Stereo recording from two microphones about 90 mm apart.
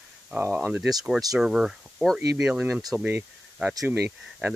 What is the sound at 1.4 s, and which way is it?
Speech, 5° right (ahead or behind).